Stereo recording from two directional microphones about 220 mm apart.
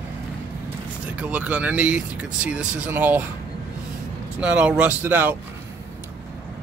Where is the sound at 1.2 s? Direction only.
5° right (ahead or behind).